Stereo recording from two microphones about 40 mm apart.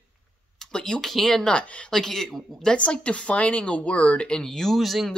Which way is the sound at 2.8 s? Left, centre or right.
Left.